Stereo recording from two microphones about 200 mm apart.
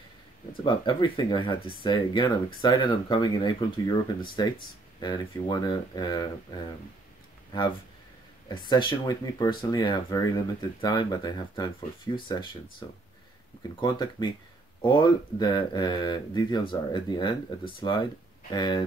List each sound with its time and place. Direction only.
0.7 s speech: 25° left (ahead or behind)
8.5 s speech: 20° left (ahead or behind)